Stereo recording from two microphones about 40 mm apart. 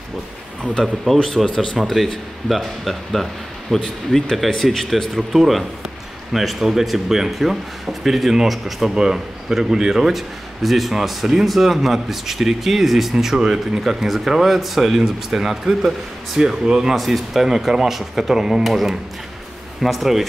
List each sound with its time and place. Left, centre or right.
1.0 s a man's voice: centre
16.6 s speech: right
16.9 s a man's voice: centre